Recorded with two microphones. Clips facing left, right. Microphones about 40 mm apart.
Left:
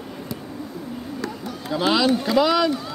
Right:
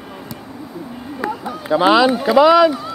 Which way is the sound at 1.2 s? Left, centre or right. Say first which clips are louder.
Right 6 dB; centre.